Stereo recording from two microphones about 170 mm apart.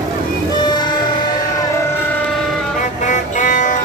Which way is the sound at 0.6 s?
25° left (ahead or behind).